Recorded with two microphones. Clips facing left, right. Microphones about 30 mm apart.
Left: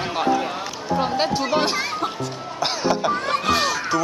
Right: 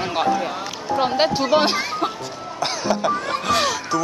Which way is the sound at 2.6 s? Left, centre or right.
Centre.